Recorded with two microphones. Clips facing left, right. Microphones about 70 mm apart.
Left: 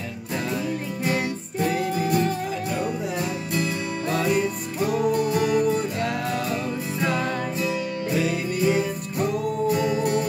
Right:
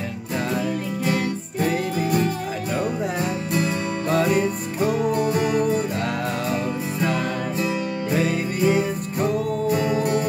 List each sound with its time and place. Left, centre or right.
4.3 s music: right
7.6 s music: right